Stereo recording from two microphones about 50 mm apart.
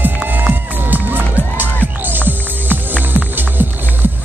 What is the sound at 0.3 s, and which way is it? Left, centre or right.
Music, right.